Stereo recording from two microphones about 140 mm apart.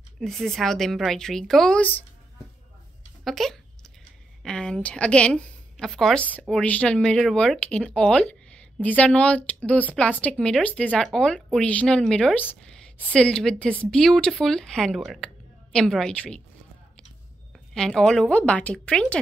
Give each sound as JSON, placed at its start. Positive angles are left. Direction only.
{"t": 0.2, "sound": "a woman's voice", "side_deg": 0}
{"t": 3.3, "sound": "a woman's voice", "side_deg": 0}
{"t": 17.7, "sound": "speech", "side_deg": 5}